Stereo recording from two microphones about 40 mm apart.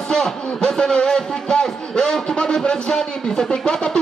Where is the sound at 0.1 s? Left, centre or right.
Centre.